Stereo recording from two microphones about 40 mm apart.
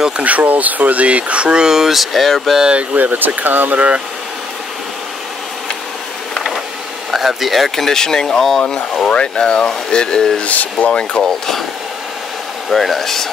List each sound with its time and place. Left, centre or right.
0.2 s speech: right; by 2.0 s centre
2.0 s speech: centre
2.6 s speech: right
3.0 s speech: right
3.7 s speech: right
7.1 s speech: centre; by 10.4 s left
10.4 s speech: left
10.9 s speech: left
11.2 s speech: centre
12.6 s speech: centre